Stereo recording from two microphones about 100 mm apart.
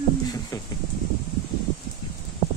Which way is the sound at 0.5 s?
40° left (ahead or behind).